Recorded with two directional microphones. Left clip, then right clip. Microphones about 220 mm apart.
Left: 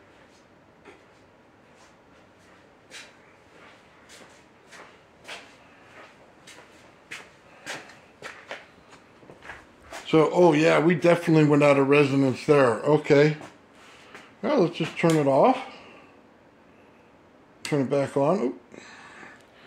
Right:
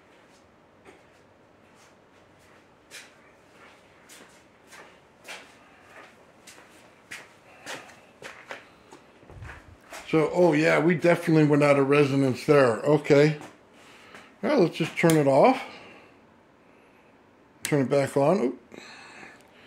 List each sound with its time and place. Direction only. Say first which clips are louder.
10.0 s a man's voice: left 3 dB; 10° left (ahead or behind); by 13.4 s 10° right (ahead or behind)
14.4 s speech: even; 15° right (ahead or behind)
17.6 s a sound: right 1 dB; 20° right (ahead or behind)